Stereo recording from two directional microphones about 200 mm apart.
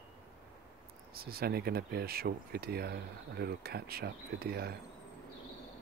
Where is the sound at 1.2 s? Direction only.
50° right (ahead or behind).